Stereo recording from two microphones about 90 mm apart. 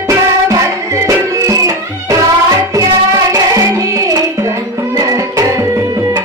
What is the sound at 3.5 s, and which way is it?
Music, 35° right (ahead or behind).